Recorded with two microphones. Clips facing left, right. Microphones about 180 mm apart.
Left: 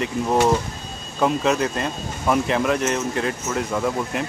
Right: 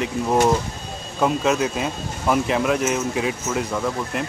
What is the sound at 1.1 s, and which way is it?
Speech, centre (ahead or behind).